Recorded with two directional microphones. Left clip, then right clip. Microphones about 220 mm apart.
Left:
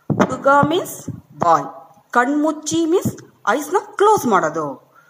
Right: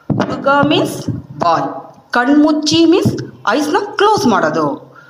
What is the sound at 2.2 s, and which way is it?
Speech, 35° left (ahead or behind).